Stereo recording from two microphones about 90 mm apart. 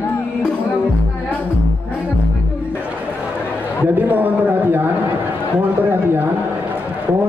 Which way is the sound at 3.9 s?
20° right (ahead or behind).